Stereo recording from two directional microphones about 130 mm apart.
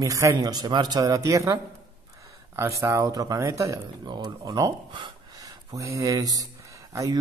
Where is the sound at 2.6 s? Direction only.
20° right (ahead or behind).